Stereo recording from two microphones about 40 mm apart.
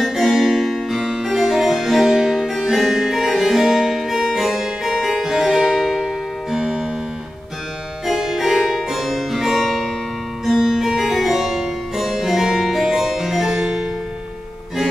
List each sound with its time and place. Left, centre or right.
0.0 s music: centre
0.7 s harpsichord: centre
2.6 s music: centre
8.1 s music: centre
10.4 s music: centre
10.9 s harpsichord: centre